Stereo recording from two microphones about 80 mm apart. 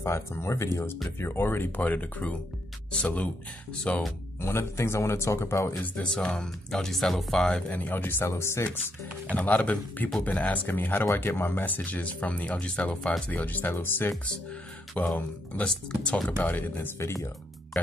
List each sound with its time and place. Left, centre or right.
0.0 s a man's voice: left; by 2.3 s centre
3.9 s speech: centre
4.4 s a man's voice: left
5.9 s a man's voice: centre; by 8.9 s left
9.3 s speech: centre
15.1 s speech: centre; by 17.3 s left